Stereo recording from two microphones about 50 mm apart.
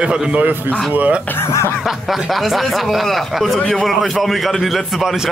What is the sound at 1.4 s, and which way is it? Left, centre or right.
Speech, left.